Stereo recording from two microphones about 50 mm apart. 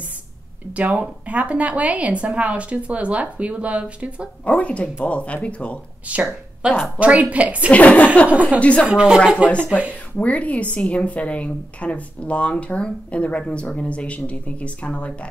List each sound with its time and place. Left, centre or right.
0.7 s speech: right
4.5 s a woman's voice: left
6.1 s speech: right
7.7 s a woman's voice: left
8.3 s speech: right
8.5 s a woman's voice: left
8.9 s speech: centre
10.1 s a woman's voice: left